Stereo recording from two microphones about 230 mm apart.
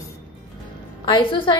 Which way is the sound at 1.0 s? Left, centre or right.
Left.